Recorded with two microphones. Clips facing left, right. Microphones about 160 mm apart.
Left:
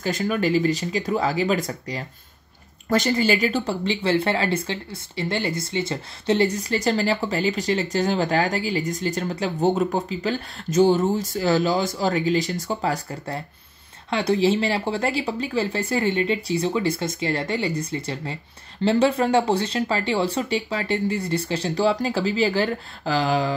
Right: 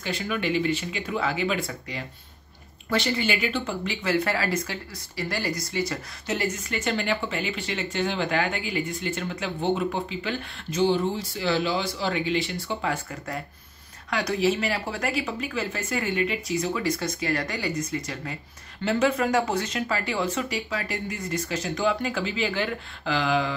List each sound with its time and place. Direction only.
0.0 s speech: 40° left (ahead or behind)